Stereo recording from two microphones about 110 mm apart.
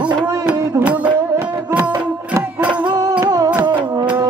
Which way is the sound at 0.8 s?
15° right (ahead or behind).